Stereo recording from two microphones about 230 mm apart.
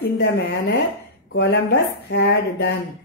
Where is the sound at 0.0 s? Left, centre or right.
Left.